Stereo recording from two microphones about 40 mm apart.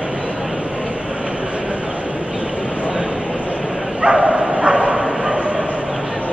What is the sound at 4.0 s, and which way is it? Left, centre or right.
Bow-wow, right.